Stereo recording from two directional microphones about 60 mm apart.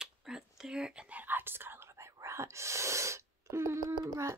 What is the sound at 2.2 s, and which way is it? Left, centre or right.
Speech, right.